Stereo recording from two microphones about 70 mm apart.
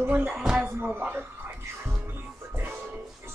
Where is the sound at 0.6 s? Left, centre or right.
Right.